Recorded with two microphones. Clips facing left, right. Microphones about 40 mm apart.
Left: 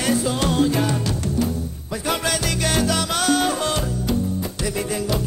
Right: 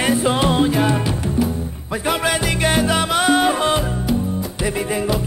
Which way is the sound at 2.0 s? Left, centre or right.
Right.